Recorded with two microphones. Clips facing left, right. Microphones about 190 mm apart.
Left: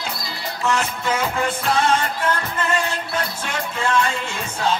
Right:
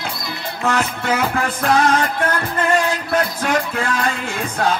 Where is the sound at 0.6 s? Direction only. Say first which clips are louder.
Right 2 dB; 60° right (ahead or behind).